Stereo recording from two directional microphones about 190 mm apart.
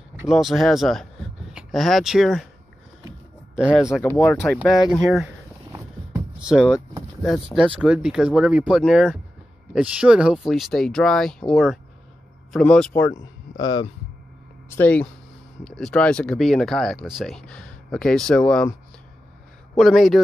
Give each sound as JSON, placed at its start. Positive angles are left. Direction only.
{"t": 0.2, "sound": "speech", "side_deg": 0}
{"t": 3.5, "sound": "speech", "side_deg": -5}
{"t": 4.3, "sound": "speech", "side_deg": 10}
{"t": 6.4, "sound": "speech", "side_deg": -5}
{"t": 13.6, "sound": "speech", "side_deg": 20}
{"t": 14.7, "sound": "speech", "side_deg": 10}
{"t": 19.7, "sound": "a man's voice", "side_deg": 0}